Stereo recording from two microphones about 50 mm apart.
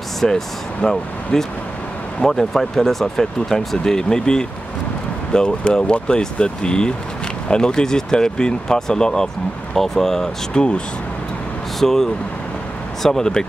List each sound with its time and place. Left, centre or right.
0.2 s speech: centre
11.8 s speech: centre